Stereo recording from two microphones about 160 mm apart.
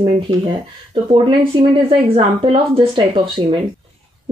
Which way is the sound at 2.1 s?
35° right (ahead or behind).